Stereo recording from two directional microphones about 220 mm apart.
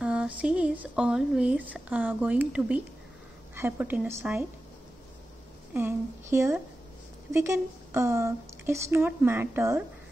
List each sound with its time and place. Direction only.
0.0 s speech: 5° right (ahead or behind)
5.7 s speech: 10° right (ahead or behind)